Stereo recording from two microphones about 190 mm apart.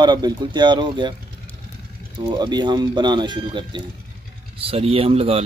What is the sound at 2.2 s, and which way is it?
Speech, 20° right (ahead or behind).